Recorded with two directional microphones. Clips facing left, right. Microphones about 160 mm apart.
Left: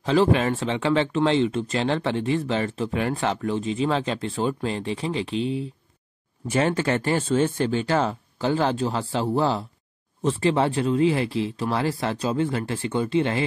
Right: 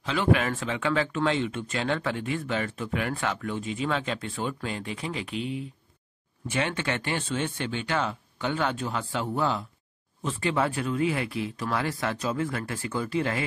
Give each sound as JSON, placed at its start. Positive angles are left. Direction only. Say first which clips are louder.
{"t": 0.0, "sound": "speech", "louder": "left 5 dB", "side_deg": 35}